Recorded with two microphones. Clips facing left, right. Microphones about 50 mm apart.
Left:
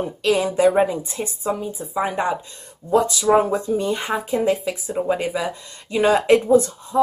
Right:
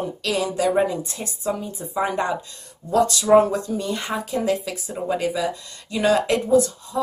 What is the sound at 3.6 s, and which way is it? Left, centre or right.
Speech, left.